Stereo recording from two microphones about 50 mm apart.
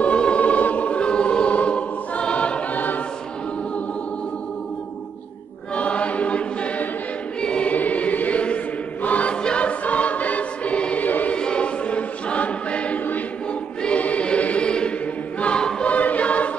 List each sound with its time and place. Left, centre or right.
0.0 s choir: left
5.8 s choir: left
7.7 s choir: left
11.1 s choir: left
11.3 s choir: centre